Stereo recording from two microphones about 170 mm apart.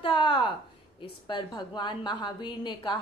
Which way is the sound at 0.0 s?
30° left (ahead or behind).